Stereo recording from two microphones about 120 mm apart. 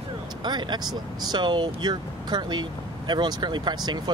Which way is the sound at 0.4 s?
40° right (ahead or behind).